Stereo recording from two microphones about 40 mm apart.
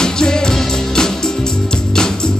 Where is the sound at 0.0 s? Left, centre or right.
Centre.